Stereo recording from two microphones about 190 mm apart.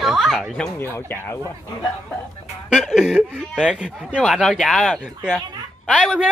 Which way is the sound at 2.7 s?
5° right (ahead or behind).